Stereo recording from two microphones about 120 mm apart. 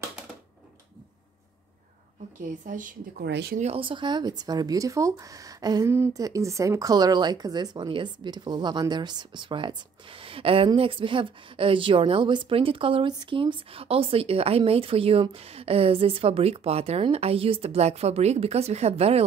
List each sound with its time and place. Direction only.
2.4 s speech: 90° right
3.7 s speech: 45° right (ahead or behind)
5.9 s a woman's voice: 20° right (ahead or behind); by 19.2 s 60° right (ahead or behind)